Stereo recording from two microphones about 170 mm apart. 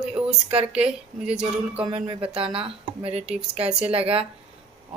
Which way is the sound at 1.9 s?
35° right (ahead or behind).